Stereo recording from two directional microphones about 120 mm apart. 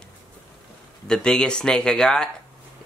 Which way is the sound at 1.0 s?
5° left (ahead or behind).